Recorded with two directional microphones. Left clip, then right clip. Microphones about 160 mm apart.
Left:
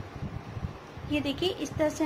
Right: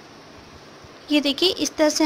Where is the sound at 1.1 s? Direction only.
65° right (ahead or behind).